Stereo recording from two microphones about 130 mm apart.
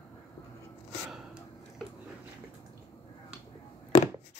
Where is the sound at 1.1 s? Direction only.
5° right (ahead or behind).